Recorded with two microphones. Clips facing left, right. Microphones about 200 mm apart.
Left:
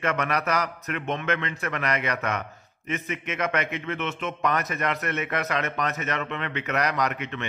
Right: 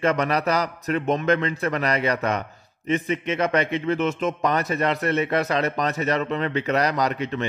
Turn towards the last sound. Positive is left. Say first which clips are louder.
# right 4 dB
turn(degrees=-35)  # may be behind; listen again after turning